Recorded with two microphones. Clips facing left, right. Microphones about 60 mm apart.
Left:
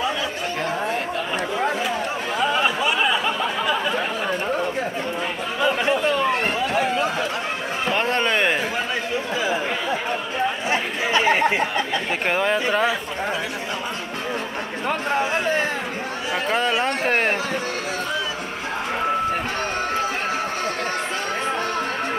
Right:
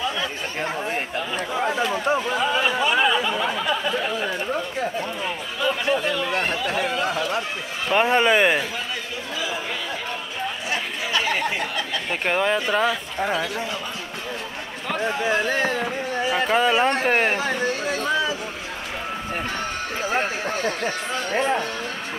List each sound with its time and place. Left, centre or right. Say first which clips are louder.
2.5 s a sound: right 2 dB; centre
5.6 s chatter: left 2 dB; left
6.2 s a sound: left 3 dB; left
7.9 s speech: right 4 dB; centre
10.7 s chatter: left 2 dB; left
12.3 s speech: even; centre
16.3 s speech: right 2 dB; centre